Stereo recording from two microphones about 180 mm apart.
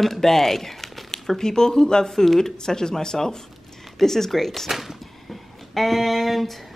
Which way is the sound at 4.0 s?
Centre (ahead or behind).